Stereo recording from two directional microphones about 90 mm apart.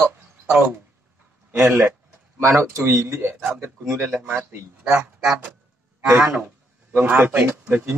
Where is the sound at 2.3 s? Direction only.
30° right (ahead or behind).